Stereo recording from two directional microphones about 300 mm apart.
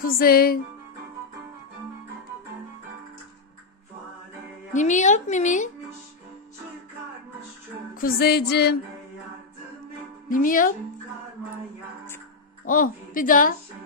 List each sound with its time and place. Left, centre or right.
0.0 s a woman's voice: left
4.7 s a woman's voice: left
7.9 s music: left
10.3 s a woman's voice: left
12.6 s a woman's voice: left